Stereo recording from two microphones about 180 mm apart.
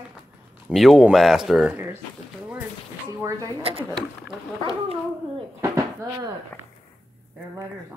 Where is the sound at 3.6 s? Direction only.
30° right (ahead or behind).